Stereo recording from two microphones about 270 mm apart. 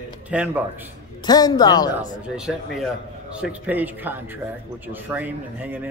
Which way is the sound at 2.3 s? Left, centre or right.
Centre.